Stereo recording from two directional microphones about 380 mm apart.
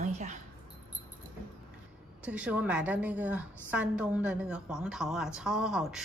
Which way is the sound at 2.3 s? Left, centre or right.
Centre.